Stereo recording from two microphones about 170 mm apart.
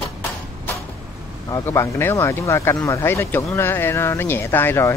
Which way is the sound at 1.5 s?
15° left (ahead or behind).